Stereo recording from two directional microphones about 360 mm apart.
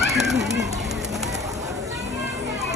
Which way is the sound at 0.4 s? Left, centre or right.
Centre.